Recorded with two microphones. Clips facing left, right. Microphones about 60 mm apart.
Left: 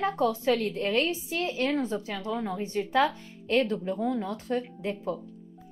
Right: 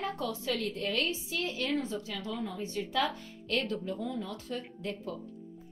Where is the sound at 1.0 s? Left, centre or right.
Left.